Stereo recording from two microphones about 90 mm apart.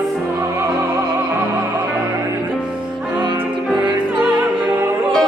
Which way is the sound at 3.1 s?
60° right (ahead or behind).